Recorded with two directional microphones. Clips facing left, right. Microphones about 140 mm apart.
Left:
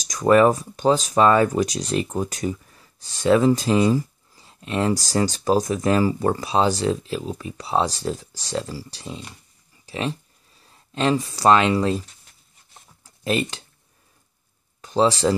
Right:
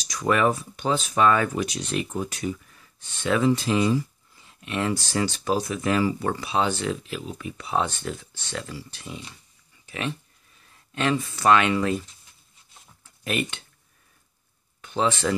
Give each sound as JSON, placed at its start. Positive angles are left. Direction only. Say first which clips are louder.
{"t": 0.0, "sound": "speech", "louder": "left 7 dB", "side_deg": 45}
{"t": 13.0, "sound": "a sound", "louder": "left 5 dB", "side_deg": 30}
{"t": 14.8, "sound": "speech", "louder": "left 5 dB", "side_deg": 35}